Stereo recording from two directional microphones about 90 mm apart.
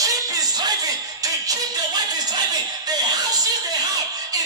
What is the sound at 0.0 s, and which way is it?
Music, 45° right (ahead or behind).